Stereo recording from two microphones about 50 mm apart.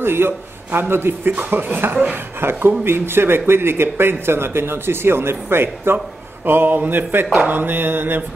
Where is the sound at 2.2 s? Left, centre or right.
Right.